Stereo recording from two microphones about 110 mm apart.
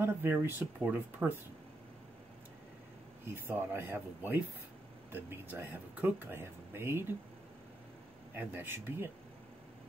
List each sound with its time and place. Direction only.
0.0 s speech: 20° right (ahead or behind)
3.3 s speech: 20° right (ahead or behind)
8.4 s speech: 20° right (ahead or behind)